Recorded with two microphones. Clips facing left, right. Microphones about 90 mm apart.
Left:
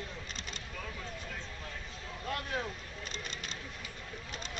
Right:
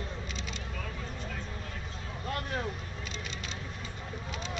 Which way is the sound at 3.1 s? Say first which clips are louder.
Right 1 dB; 45° left (ahead or behind).